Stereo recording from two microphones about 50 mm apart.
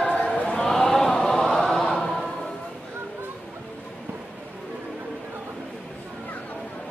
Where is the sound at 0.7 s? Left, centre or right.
Centre.